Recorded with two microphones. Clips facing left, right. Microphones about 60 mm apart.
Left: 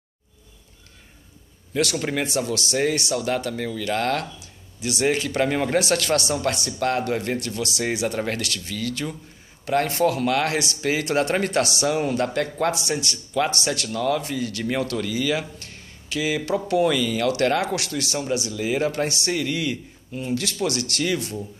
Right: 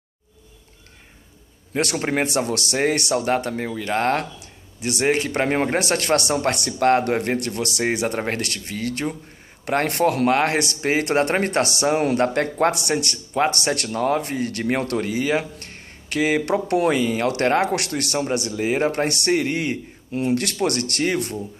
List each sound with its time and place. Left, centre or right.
1.7 s speech: right
3.2 s speech: right
9.7 s speech: right
17.0 s speech: right
19.0 s speech: right